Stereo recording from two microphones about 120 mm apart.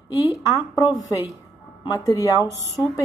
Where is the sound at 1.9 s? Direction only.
30° left (ahead or behind).